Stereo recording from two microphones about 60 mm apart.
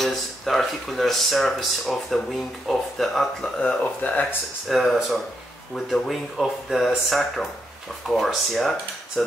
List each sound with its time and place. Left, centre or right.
0.0 s speech: centre
3.5 s speech: left
4.6 s speech: centre